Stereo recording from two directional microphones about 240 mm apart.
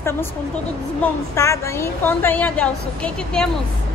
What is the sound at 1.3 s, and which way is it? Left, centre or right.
A woman's voice, centre.